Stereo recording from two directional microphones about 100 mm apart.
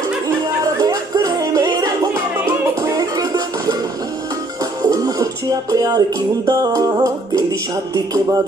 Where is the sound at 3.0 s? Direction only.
40° right (ahead or behind).